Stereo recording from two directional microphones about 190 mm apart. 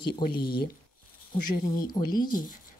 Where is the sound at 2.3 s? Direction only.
45° left (ahead or behind).